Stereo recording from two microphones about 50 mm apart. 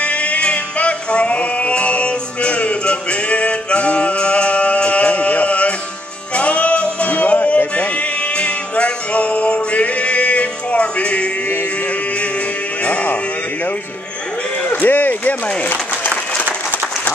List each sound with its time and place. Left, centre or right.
0.0 s music: left
12.8 s sheep: left
14.6 s a sound: left